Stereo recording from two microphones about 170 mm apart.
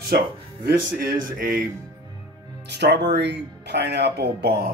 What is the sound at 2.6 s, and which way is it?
Speech, 85° right.